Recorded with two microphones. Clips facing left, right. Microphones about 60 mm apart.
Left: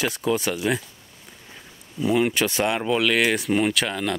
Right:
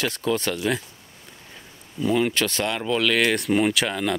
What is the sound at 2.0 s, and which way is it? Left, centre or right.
Speech, centre.